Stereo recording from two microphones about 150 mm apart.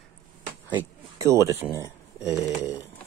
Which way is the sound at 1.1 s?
20° right (ahead or behind).